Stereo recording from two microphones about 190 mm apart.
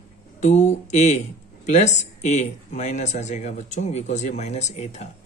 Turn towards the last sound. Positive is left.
turn(degrees=35)  # may be behind; listen again after turning